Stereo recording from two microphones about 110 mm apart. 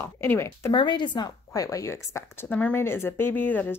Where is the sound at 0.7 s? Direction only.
45° left (ahead or behind); by 2.5 s 25° left (ahead or behind).